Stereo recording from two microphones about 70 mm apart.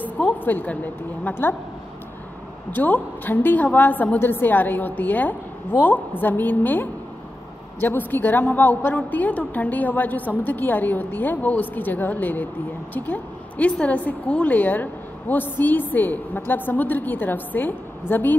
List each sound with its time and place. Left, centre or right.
0.0 s a sound: left
1.2 s speech: left
2.7 s a woman's voice: left